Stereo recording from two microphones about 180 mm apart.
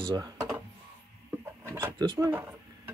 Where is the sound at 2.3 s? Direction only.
10° right (ahead or behind).